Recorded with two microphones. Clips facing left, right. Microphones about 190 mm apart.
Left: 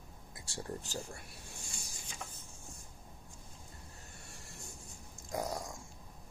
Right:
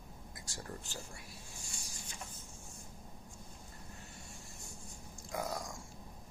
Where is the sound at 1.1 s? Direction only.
65° left (ahead or behind).